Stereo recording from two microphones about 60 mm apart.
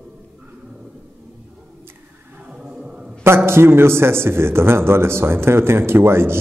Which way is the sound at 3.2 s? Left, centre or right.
Right.